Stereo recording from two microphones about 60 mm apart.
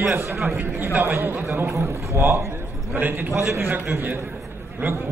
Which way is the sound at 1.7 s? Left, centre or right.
Right.